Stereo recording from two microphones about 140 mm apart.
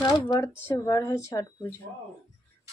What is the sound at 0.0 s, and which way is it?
A woman's voice, 25° left (ahead or behind).